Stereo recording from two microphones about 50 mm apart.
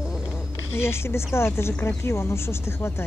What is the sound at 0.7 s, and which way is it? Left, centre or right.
A woman's voice, left.